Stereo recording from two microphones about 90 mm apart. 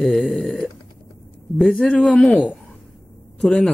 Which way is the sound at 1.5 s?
Centre (ahead or behind).